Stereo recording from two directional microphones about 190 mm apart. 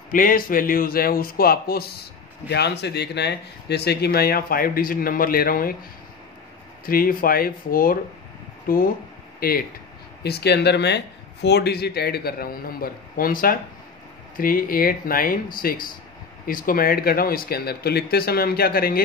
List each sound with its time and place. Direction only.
0.1 s speech: 45° left (ahead or behind)
6.9 s speech: 50° left (ahead or behind)